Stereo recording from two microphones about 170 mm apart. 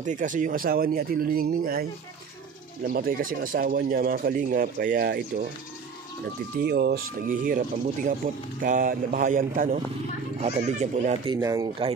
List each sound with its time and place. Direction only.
0.0 s speech: 45° right (ahead or behind)
2.9 s speech: 60° right (ahead or behind)
6.6 s speech: 70° right (ahead or behind); by 11.1 s 45° right (ahead or behind)
11.3 s speech: 20° right (ahead or behind)